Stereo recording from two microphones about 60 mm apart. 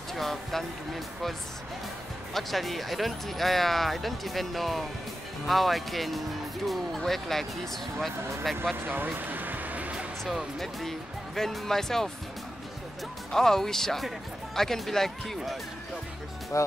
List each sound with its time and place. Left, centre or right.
0.1 s speech: centre
2.3 s speech: centre
8.7 s music: right
10.2 s speech: centre
13.3 s speech: centre
16.5 s speech: left